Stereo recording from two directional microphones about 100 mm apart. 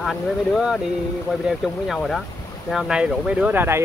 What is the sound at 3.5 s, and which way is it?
Speech, 20° right (ahead or behind).